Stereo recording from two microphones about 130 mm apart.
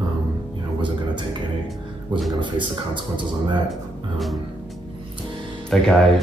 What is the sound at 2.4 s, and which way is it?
Speech, 40° right (ahead or behind).